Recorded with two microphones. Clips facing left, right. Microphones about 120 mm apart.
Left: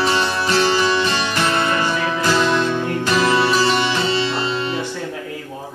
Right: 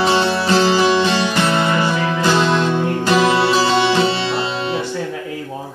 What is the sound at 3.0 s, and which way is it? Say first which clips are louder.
Music: right 4 dB; 20° right (ahead or behind).